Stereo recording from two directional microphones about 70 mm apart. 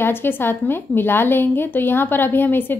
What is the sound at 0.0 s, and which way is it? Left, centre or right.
A woman's voice, left.